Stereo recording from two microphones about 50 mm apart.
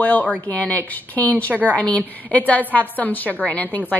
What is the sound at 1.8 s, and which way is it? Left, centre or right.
A woman's voice, left.